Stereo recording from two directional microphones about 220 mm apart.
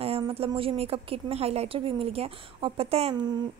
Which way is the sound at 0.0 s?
25° right (ahead or behind).